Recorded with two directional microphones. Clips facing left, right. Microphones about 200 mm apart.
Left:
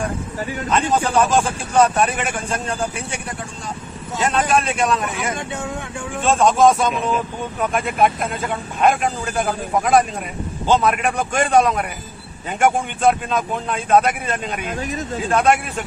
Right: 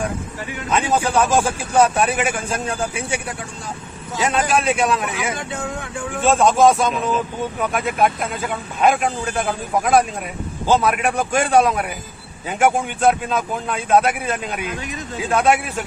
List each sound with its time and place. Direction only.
0.7 s a man's voice: 5° right (ahead or behind)
14.6 s speech: 40° left (ahead or behind)
15.2 s a man's voice: 5° right (ahead or behind)